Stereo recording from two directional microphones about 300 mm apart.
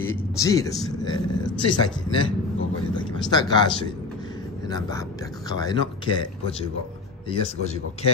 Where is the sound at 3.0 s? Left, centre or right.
Centre.